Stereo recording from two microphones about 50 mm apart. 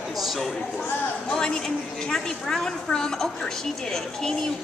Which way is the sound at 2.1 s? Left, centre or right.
Centre.